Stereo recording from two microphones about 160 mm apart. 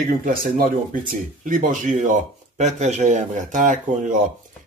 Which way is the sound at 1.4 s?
55° right (ahead or behind).